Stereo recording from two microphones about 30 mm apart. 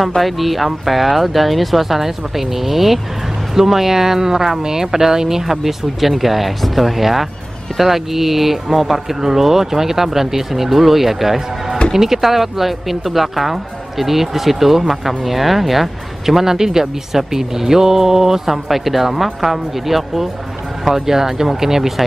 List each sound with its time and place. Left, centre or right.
0.2 s speech: centre
16.8 s speech: centre
17.3 s speech: centre